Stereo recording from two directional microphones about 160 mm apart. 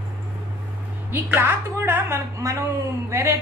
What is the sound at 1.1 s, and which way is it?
A woman's voice, 15° right (ahead or behind).